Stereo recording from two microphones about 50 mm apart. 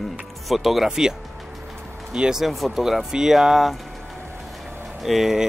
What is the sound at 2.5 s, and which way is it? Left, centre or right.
Speech, centre.